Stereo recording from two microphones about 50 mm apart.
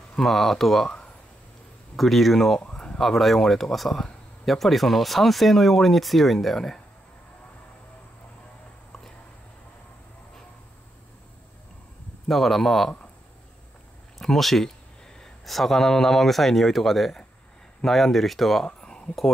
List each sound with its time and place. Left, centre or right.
0.1 s speech: centre
2.0 s speech: centre
3.0 s speech: centre
12.3 s speech: centre
14.1 s speech: centre
18.7 s a sound: centre